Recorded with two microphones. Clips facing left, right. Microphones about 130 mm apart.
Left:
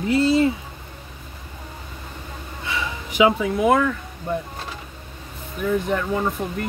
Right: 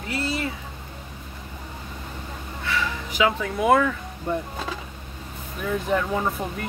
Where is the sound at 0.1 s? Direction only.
25° left (ahead or behind).